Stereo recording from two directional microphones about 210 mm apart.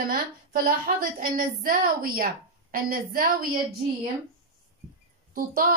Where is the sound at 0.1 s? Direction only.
40° right (ahead or behind).